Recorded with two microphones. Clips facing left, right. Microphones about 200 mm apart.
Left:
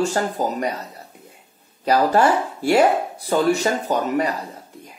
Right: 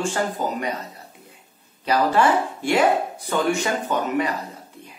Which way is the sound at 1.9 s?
40° left (ahead or behind).